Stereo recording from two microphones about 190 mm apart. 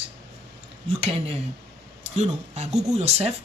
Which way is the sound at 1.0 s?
30° right (ahead or behind).